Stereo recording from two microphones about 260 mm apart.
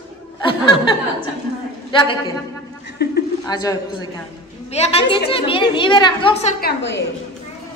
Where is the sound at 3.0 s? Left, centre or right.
Left.